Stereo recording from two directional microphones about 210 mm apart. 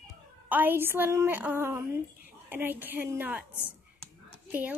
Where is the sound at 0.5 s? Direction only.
10° right (ahead or behind).